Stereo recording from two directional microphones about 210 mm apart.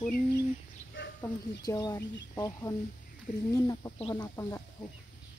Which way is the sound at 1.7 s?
15° left (ahead or behind).